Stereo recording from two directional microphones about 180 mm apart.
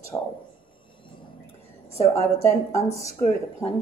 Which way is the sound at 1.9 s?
35° right (ahead or behind).